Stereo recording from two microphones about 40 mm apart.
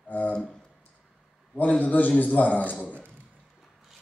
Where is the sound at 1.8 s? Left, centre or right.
Left.